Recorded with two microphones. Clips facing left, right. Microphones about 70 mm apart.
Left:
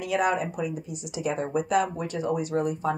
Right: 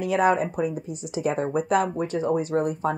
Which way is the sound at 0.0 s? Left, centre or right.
Right.